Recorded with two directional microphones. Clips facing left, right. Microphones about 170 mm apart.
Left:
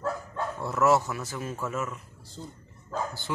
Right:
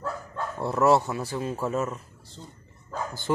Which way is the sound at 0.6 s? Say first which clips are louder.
Right 3 dB; 30° right (ahead or behind).